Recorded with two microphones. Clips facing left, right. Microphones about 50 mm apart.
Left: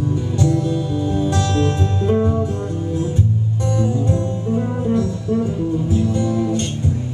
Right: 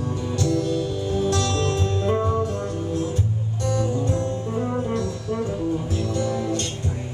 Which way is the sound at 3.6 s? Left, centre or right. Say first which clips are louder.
Left 2 dB; centre.